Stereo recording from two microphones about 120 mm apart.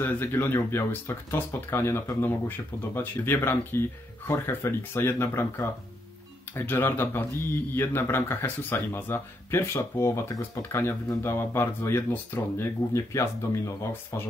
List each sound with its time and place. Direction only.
0.0 s speech: 15° left (ahead or behind)